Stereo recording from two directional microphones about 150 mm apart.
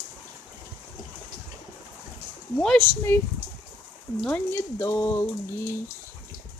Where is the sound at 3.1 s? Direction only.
15° left (ahead or behind).